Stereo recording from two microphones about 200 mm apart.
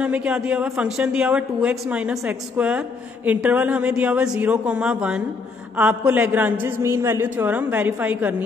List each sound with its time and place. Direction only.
0.0 s a woman's voice: 5° right (ahead or behind)